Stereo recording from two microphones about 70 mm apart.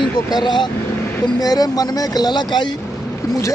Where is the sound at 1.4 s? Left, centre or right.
Left.